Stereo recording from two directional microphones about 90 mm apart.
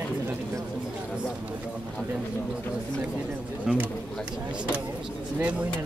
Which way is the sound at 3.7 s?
5° right (ahead or behind).